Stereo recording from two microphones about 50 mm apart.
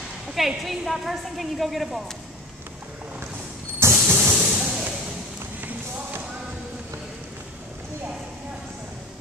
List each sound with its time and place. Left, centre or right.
0.3 s a woman's voice: centre
3.8 s vehicle: right
4.2 s hiss: right
5.6 s a sound: right